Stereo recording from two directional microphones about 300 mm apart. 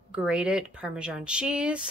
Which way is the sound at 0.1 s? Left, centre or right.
Centre.